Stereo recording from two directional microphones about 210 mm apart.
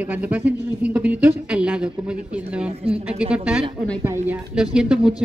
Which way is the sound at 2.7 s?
30° right (ahead or behind).